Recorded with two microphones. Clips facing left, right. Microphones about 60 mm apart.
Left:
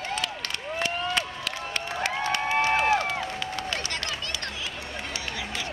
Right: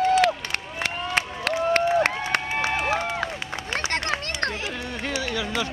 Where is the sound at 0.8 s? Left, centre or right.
Right.